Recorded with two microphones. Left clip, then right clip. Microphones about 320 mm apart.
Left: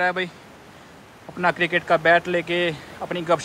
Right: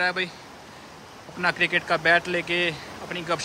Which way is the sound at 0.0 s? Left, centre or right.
Centre.